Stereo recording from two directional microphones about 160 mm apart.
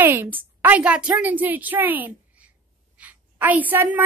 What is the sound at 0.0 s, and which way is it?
A woman's voice, 10° right (ahead or behind).